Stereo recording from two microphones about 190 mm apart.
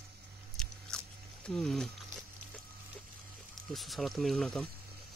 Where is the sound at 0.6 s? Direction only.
5° left (ahead or behind).